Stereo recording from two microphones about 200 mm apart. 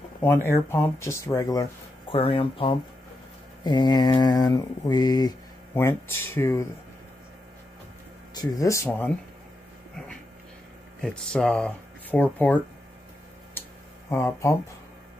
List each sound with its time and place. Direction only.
0.2 s speech: 10° left (ahead or behind)
2.1 s mantra: 25° left (ahead or behind)
5.8 s speech: 10° left (ahead or behind)
8.4 s speech: 15° left (ahead or behind)
11.0 s speech: 5° left (ahead or behind)
13.6 s a sound: 15° left (ahead or behind)